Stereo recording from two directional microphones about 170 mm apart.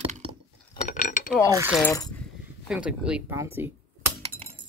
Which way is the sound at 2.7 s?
5° right (ahead or behind).